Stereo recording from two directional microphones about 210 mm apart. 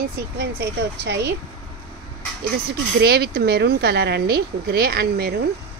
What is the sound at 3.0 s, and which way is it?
Speech, 50° right (ahead or behind).